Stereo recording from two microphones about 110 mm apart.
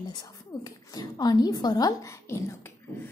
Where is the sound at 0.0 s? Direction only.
35° left (ahead or behind).